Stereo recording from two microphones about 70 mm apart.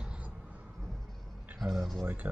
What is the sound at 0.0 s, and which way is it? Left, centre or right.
Crow, centre.